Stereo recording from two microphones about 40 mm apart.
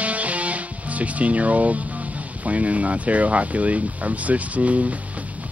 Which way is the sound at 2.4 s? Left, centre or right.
Right.